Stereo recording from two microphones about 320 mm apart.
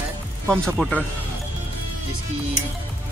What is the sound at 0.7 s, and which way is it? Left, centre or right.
Speech, centre.